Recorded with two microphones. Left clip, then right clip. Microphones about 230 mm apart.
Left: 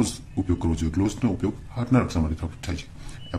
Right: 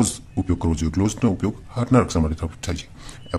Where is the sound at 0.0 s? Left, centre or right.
Right.